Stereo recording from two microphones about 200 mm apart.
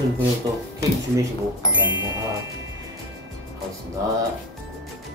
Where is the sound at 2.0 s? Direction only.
15° right (ahead or behind).